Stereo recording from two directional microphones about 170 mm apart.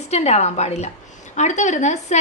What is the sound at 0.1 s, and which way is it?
A woman's voice, 40° left (ahead or behind).